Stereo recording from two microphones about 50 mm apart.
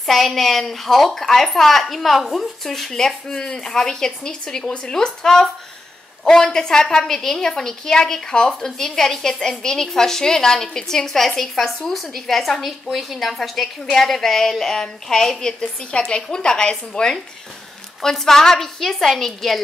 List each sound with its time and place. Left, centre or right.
0.0 s a woman's voice: centre
15.6 s a woman's voice: left; by 19.6 s centre